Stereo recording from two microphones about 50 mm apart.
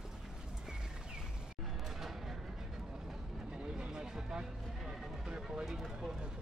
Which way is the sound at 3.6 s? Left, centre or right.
Centre.